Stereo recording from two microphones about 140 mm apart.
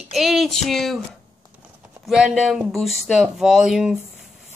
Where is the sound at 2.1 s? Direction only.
5° right (ahead or behind).